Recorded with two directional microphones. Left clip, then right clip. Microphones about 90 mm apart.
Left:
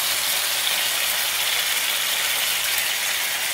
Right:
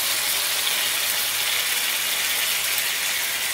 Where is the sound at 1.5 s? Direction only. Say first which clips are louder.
Left 1 dB; 40° left (ahead or behind).